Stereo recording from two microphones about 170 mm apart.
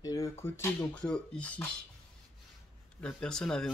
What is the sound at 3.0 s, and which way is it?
Speech, 5° left (ahead or behind).